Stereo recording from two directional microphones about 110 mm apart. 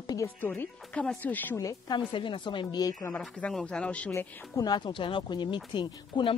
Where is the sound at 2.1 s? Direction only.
50° left (ahead or behind).